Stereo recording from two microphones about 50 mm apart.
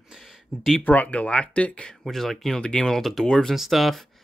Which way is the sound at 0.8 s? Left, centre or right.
Left.